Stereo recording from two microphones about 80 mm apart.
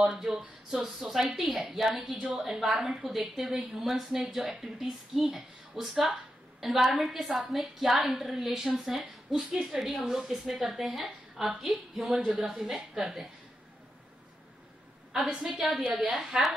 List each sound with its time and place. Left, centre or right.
0.0 s speech: centre
15.2 s speech: centre